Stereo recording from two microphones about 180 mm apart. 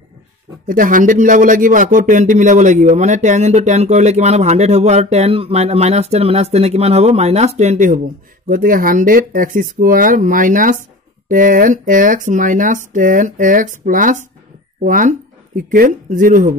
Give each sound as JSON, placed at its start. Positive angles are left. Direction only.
{"t": 0.7, "sound": "speech", "side_deg": -50}
{"t": 8.5, "sound": "speech", "side_deg": -50}